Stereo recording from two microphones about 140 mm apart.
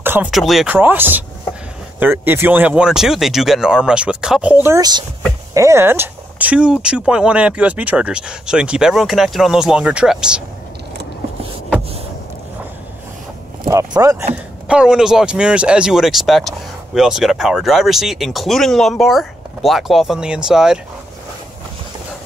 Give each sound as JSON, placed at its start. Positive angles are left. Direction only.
{"t": 0.0, "sound": "a sound", "side_deg": -15}
{"t": 0.3, "sound": "speech", "side_deg": 0}
{"t": 0.7, "sound": "speech", "side_deg": -15}
{"t": 4.7, "sound": "speech", "side_deg": -30}
{"t": 13.7, "sound": "speech", "side_deg": -25}
{"t": 14.3, "sound": "speech", "side_deg": -5}